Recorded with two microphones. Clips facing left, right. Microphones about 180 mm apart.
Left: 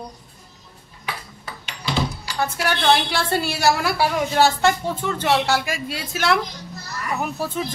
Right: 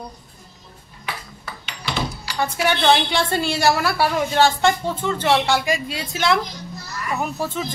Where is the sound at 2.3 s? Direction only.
Centre (ahead or behind).